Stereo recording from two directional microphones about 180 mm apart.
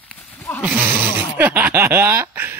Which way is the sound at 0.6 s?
10° right (ahead or behind).